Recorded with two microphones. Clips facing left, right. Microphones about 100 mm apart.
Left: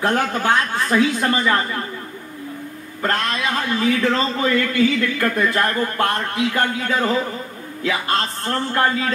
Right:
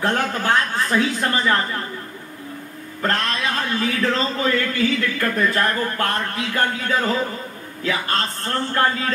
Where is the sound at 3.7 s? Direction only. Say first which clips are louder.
Left 4 dB; 25° left (ahead or behind).